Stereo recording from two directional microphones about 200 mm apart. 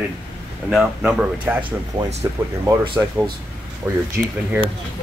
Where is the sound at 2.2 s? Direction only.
20° right (ahead or behind).